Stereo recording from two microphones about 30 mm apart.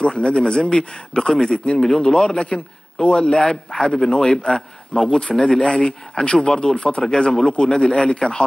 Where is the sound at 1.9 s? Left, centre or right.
Centre.